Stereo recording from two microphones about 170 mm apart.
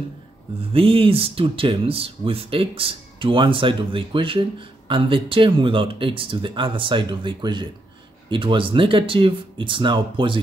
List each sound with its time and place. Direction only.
0.6 s speech: 35° right (ahead or behind)